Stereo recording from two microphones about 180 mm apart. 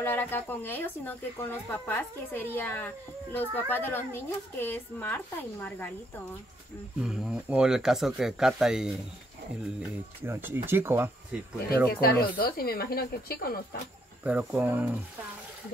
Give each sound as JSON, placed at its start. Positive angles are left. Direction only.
{"t": 0.0, "sound": "speech", "side_deg": 10}
{"t": 7.0, "sound": "speech", "side_deg": -5}
{"t": 12.0, "sound": "speech", "side_deg": 55}
{"t": 14.2, "sound": "speech", "side_deg": -10}